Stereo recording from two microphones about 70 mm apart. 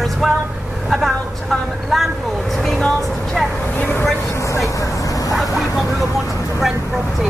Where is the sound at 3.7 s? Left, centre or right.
Left.